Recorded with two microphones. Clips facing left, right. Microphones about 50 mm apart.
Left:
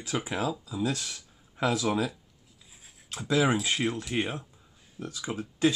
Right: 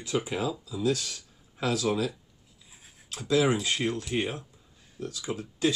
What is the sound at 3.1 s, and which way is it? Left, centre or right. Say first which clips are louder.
Speech: right 1 dB; left.